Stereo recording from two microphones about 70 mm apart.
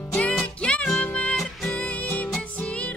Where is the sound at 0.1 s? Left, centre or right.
Centre.